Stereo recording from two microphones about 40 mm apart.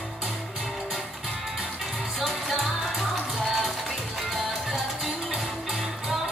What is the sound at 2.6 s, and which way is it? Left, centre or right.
Music, centre.